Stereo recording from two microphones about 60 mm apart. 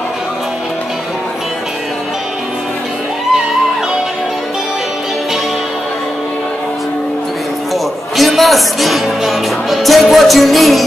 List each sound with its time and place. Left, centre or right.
7.7 s music: centre